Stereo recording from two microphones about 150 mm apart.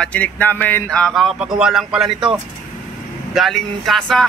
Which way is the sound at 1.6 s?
5° right (ahead or behind).